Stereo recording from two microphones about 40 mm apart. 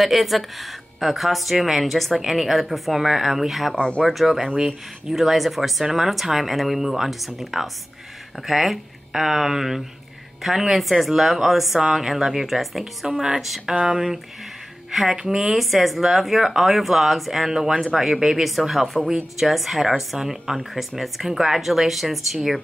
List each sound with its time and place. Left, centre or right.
0.0 s speech: centre
3.7 s speech: left
4.0 s speech: centre
14.9 s speech: centre